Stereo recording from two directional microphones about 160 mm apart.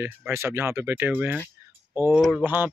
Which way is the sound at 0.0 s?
15° right (ahead or behind).